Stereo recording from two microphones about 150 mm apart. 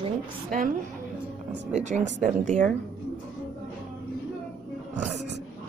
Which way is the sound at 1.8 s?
50° right (ahead or behind).